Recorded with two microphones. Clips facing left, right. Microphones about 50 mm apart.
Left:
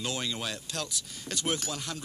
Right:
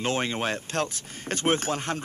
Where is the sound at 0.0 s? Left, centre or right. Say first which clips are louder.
Right 7 dB; right.